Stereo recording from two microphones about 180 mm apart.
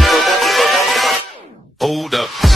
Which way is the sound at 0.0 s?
Centre (ahead or behind).